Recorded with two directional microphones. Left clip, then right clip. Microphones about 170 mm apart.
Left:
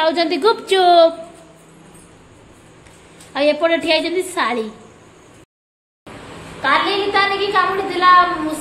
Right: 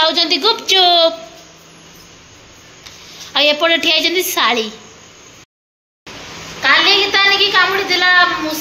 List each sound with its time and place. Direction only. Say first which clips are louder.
0.0 s a woman's voice: right 2 dB; 30° left (ahead or behind)
3.3 s a woman's voice: right 3 dB; centre (ahead or behind)
6.6 s a woman's voice: right 5 dB; 10° left (ahead or behind)